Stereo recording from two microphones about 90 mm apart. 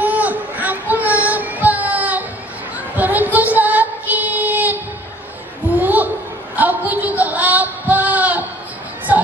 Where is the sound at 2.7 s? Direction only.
20° right (ahead or behind).